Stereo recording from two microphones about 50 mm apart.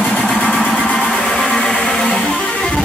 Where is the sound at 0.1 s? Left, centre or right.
Left.